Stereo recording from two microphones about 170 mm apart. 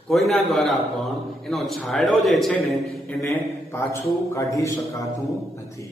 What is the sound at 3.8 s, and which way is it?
A man's voice, 15° left (ahead or behind).